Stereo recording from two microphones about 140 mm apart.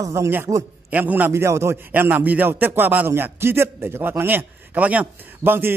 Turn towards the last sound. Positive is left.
turn(degrees=-15)  # may be behind; listen again after turning